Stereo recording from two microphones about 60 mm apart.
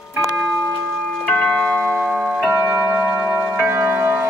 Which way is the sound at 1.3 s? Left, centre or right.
Centre.